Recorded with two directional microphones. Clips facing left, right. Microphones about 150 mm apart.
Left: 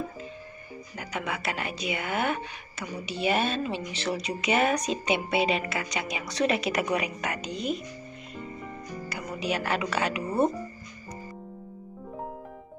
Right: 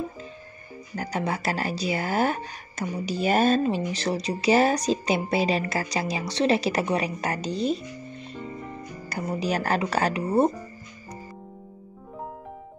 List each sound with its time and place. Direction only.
0.9 s speech: 35° right (ahead or behind)
9.1 s speech: 40° right (ahead or behind)